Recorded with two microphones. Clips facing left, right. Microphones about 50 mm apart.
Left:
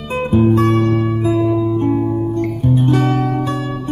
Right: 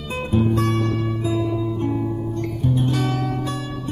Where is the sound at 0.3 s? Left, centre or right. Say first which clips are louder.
Left 7 dB; left.